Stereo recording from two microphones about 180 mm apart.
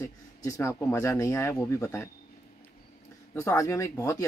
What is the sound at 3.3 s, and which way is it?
Speech, 15° left (ahead or behind).